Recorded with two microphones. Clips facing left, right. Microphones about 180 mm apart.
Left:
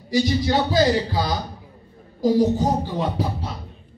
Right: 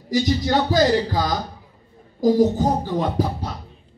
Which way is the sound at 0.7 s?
45° right (ahead or behind).